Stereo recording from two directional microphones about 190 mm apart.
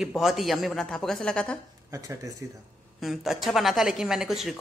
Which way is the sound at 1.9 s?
15° right (ahead or behind).